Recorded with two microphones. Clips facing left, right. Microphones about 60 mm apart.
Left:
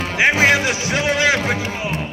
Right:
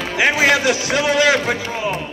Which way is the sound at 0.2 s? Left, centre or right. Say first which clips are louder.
Even; left.